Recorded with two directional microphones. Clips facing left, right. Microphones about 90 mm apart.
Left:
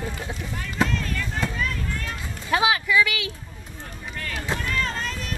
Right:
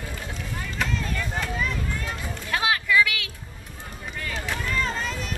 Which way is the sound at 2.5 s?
15° left (ahead or behind).